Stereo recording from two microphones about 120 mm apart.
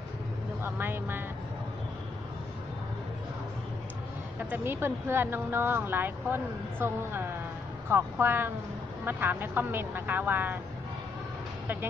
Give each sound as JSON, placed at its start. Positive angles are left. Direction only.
{"t": 0.7, "sound": "vehicle", "side_deg": -20}
{"t": 4.5, "sound": "speech", "side_deg": -20}
{"t": 11.6, "sound": "speech", "side_deg": -15}